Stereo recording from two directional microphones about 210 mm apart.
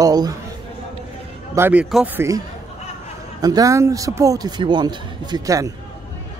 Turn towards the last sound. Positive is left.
turn(degrees=-15)  # may be behind; listen again after turning